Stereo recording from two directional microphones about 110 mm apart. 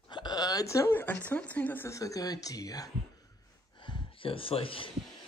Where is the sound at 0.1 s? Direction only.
40° left (ahead or behind); by 1.9 s 15° left (ahead or behind).